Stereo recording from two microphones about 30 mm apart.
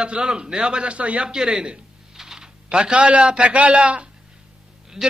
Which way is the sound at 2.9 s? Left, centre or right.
Right.